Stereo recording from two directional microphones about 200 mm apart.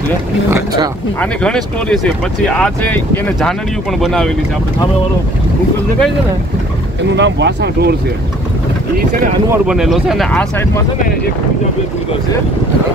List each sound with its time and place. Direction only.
0.5 s speech: 15° right (ahead or behind)
1.2 s speech: 5° left (ahead or behind)
7.2 s speech: 60° right (ahead or behind)
9.5 s speech: centre (ahead or behind)